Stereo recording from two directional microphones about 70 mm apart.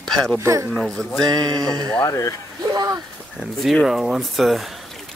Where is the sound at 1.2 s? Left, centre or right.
Right.